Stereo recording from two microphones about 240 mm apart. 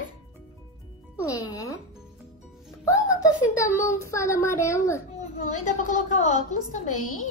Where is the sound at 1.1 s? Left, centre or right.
Centre.